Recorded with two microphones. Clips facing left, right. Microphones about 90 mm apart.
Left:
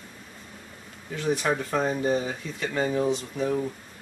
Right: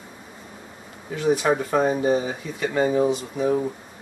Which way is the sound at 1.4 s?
20° right (ahead or behind).